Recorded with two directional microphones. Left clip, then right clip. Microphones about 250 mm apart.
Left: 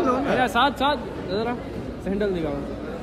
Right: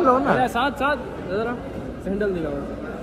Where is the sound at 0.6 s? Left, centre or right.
Left.